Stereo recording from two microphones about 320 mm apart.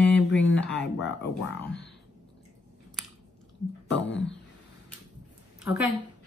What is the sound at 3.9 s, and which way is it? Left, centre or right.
Speech, left.